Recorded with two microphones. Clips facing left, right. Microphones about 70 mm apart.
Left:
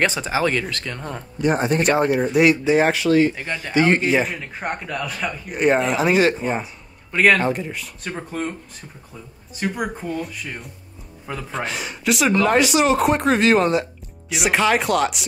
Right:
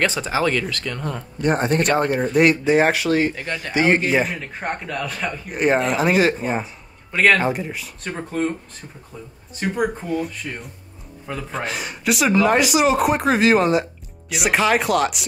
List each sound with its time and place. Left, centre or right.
0.0 s speech: left
1.4 s a man's voice: centre
3.3 s a man's voice: centre
3.7 s a man's voice: centre
9.6 s a man's voice: centre